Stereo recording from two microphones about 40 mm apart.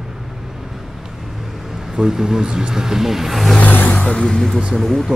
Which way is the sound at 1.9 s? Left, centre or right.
Centre.